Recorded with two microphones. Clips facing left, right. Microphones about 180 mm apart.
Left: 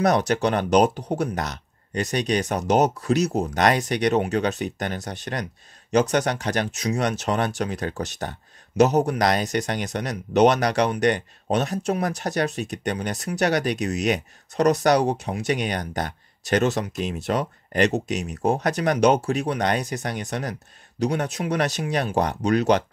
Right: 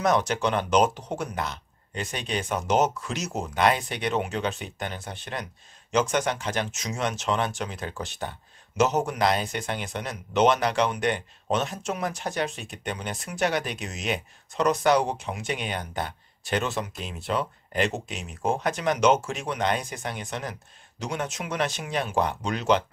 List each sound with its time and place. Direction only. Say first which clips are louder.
0.0 s speech: left 3 dB; 35° left (ahead or behind)